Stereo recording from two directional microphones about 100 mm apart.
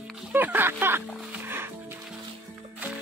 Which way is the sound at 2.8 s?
15° right (ahead or behind).